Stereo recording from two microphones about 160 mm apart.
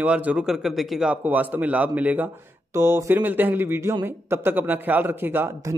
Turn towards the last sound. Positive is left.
turn(degrees=-15)  # may be behind; listen again after turning